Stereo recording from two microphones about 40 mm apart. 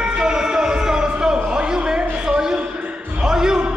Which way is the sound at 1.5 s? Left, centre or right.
Right.